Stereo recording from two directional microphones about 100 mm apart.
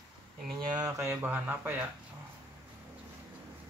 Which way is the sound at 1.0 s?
20° right (ahead or behind).